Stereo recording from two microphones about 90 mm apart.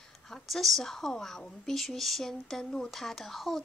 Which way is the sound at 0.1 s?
Centre (ahead or behind).